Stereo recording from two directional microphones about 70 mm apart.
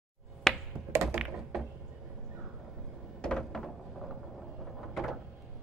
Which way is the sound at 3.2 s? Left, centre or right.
Centre.